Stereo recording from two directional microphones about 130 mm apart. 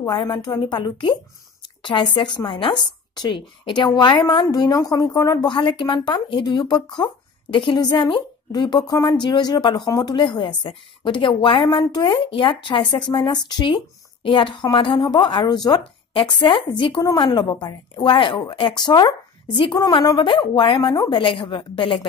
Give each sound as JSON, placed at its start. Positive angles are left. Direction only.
{"t": 0.0, "sound": "a woman's voice", "side_deg": 40}